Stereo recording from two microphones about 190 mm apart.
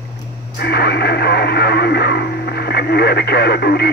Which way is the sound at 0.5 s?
55° left (ahead or behind).